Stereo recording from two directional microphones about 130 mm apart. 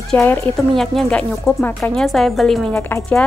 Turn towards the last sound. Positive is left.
turn(degrees=20)  # may be behind; listen again after turning